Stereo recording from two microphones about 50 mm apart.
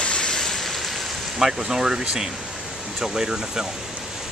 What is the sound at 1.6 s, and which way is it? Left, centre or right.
Speech, centre.